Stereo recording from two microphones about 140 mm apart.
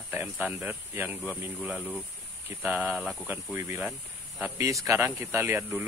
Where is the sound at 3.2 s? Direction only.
15° right (ahead or behind).